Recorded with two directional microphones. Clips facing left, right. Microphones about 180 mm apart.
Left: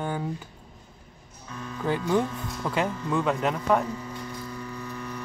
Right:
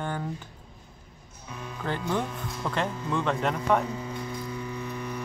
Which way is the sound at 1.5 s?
15° right (ahead or behind).